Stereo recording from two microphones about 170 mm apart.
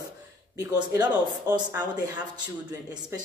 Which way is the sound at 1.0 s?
25° right (ahead or behind).